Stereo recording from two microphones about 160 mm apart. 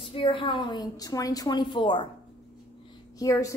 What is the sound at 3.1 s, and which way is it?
Speech, 20° left (ahead or behind).